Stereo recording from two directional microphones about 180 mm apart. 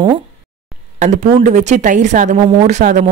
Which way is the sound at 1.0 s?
40° right (ahead or behind).